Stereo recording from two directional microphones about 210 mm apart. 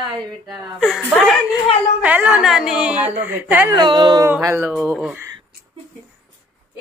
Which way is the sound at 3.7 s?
20° right (ahead or behind).